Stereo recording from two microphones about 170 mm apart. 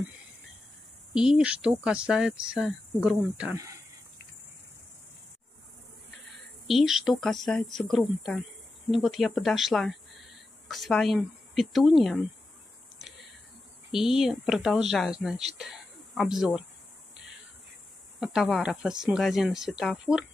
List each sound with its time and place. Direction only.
1.1 s speech: 5° right (ahead or behind)
3.5 s snake: 20° right (ahead or behind)
6.7 s speech: centre (ahead or behind)
13.9 s speech: centre (ahead or behind)
18.2 s speech: centre (ahead or behind)